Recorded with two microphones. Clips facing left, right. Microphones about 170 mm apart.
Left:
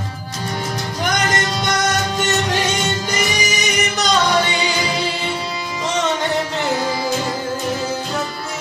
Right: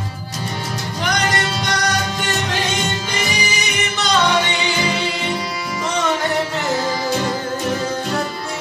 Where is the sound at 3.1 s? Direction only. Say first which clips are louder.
Left 2 dB; 40° left (ahead or behind).